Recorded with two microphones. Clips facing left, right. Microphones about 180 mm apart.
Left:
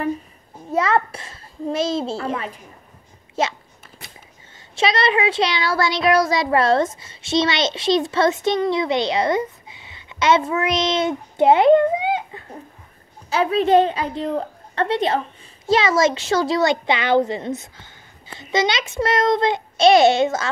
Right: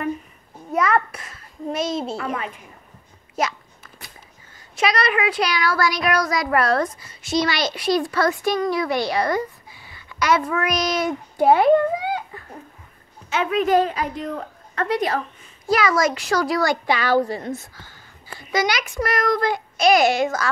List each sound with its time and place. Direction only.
0.7 s a child's voice: 25° left (ahead or behind)
3.3 s a sound: 25° left (ahead or behind)
4.7 s speech: 25° left (ahead or behind)
13.3 s speech: 35° left (ahead or behind)